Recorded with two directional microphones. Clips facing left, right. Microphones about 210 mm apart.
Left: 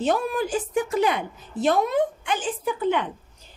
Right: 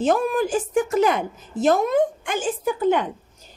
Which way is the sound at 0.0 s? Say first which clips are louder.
Right 3 dB; 50° right (ahead or behind).